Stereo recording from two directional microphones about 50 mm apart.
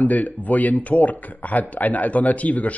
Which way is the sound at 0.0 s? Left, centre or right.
Left.